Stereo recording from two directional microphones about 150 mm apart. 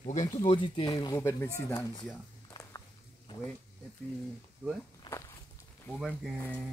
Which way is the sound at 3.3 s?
30° left (ahead or behind).